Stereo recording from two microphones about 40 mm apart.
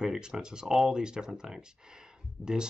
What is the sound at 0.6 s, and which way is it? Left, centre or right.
Speech, centre.